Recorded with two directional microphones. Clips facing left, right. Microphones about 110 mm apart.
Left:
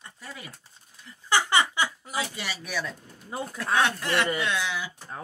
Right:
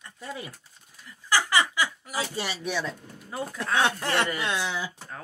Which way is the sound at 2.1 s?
30° right (ahead or behind).